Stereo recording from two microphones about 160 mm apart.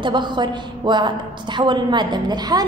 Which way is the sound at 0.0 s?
30° right (ahead or behind).